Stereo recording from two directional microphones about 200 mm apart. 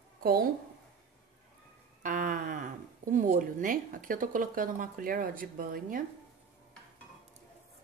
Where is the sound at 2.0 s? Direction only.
45° right (ahead or behind).